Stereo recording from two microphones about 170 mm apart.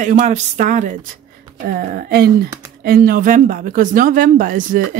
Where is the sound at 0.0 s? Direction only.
50° right (ahead or behind).